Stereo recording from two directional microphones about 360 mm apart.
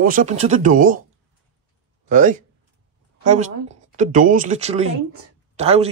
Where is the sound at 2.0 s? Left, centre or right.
Right.